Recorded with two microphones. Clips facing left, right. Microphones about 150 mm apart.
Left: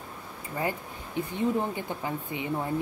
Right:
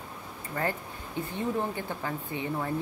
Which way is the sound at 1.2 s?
15° left (ahead or behind).